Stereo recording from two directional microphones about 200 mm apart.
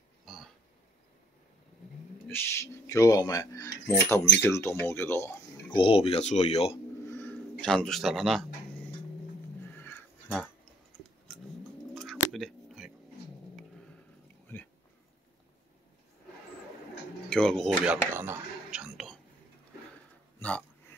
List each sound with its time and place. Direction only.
0.2 s a sound: centre (ahead or behind)
2.2 s speech: 10° left (ahead or behind)
5.7 s speech: 25° left (ahead or behind)
7.1 s speech: 10° left (ahead or behind)
9.7 s a sound: 10° left (ahead or behind)
11.9 s a sound: centre (ahead or behind)
17.3 s speech: 5° left (ahead or behind)
17.8 s whispering: 10° right (ahead or behind)
20.3 s hiccup: 5° left (ahead or behind)